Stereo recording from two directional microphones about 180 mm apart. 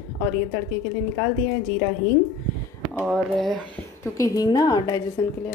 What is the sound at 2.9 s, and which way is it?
Speech, centre (ahead or behind).